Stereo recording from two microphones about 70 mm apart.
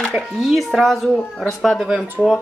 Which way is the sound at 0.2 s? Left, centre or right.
Centre.